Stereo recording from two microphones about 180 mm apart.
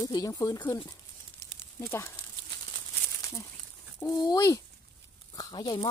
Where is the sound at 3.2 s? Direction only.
15° left (ahead or behind).